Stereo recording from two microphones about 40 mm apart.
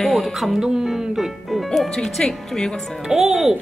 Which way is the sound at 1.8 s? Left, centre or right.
Centre.